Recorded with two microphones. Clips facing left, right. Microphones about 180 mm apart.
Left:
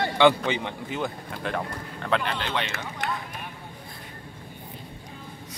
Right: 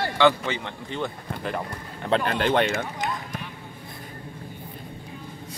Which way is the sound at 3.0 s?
55° left (ahead or behind).